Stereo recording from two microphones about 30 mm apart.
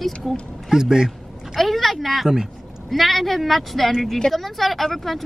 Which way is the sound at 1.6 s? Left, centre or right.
Centre.